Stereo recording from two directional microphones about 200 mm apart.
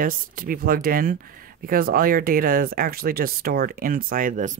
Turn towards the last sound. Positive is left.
turn(degrees=-40)  # may be behind; listen again after turning